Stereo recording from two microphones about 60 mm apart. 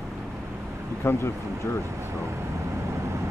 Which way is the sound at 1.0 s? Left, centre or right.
Left.